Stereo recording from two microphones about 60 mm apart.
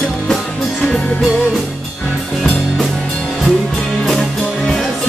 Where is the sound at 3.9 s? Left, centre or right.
Centre.